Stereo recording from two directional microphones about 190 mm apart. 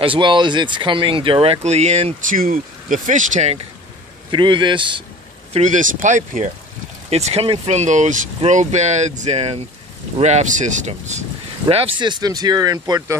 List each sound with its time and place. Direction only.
0.0 s speech: 25° right (ahead or behind)
4.3 s speech: 25° right (ahead or behind)
5.5 s speech: 40° right (ahead or behind); by 13.0 s 20° right (ahead or behind)